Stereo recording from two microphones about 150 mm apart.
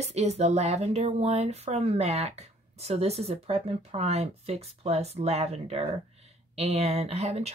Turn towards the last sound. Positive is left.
turn(degrees=-45)  # may be behind; listen again after turning